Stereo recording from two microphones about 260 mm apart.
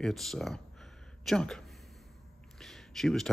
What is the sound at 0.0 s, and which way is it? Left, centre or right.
Speech, centre.